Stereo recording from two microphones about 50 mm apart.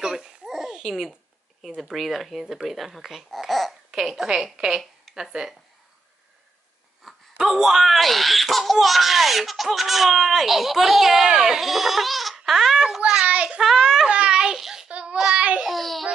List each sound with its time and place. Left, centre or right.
0.0 s babbling: centre
1.8 s speech: centre
7.0 s speech: centre; by 13.6 s right
13.6 s a child's voice: centre
14.6 s child singing: centre
14.9 s child singing: right
15.3 s babbling: right
15.6 s speech: centre